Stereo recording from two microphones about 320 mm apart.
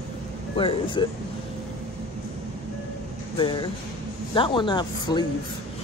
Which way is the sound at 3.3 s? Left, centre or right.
Centre.